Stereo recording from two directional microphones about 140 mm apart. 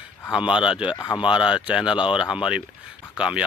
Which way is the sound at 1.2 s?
5° right (ahead or behind).